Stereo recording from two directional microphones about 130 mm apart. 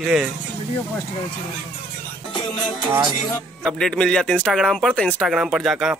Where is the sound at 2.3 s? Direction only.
35° left (ahead or behind).